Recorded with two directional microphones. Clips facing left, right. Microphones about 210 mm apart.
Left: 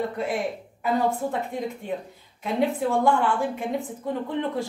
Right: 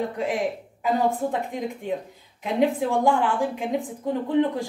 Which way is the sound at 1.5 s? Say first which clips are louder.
Even; 15° right (ahead or behind).